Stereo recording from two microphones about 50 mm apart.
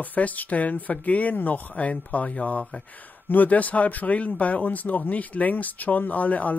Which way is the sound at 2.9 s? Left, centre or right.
Left.